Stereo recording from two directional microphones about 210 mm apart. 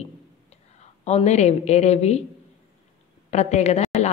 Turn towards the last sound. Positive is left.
turn(degrees=30)  # may be behind; listen again after turning